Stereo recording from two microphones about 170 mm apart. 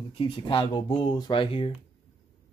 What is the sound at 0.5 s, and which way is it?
Speech, 30° left (ahead or behind).